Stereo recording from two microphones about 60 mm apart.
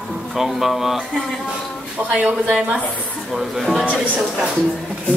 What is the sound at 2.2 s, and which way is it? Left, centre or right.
Speech, centre.